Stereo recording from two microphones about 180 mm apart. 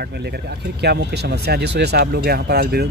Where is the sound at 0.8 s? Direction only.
65° right (ahead or behind).